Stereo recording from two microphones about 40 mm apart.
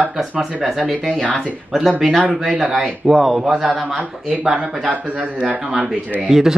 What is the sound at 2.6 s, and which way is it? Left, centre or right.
Speech, centre.